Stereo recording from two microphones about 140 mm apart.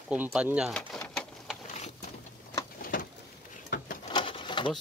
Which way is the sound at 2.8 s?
75° left (ahead or behind).